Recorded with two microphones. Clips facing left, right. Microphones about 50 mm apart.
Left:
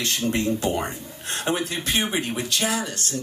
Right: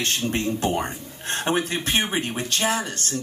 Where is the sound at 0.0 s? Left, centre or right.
Right.